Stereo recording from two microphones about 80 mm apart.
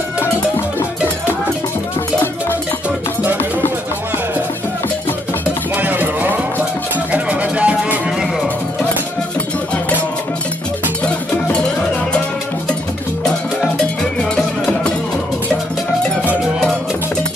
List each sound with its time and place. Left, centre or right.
5.8 s music: right